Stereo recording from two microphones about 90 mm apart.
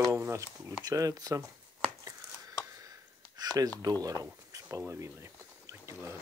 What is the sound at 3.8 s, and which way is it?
Speech, 45° right (ahead or behind).